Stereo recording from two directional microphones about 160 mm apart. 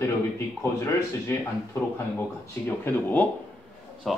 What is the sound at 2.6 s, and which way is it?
Speech, 10° left (ahead or behind).